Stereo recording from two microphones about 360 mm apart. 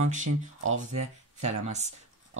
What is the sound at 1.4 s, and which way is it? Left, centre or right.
Speech, centre.